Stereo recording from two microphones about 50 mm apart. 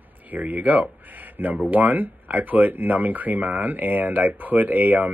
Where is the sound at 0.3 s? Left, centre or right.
Right.